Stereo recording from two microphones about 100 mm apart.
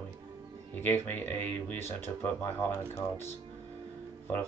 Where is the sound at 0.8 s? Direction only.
20° left (ahead or behind).